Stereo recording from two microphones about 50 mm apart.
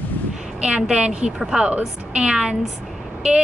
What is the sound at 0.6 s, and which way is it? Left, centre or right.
A woman's voice, centre.